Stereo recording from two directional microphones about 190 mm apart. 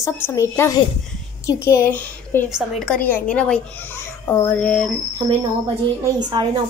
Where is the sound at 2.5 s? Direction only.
Centre (ahead or behind).